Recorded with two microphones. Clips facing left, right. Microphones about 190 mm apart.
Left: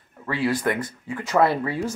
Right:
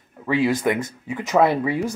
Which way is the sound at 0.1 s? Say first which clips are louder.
Right 4 dB; 15° right (ahead or behind).